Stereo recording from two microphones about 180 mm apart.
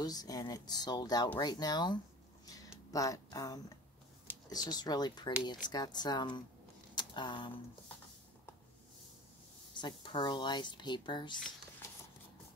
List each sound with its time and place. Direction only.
0.0 s speech: 20° left (ahead or behind)
9.8 s speech: 25° left (ahead or behind)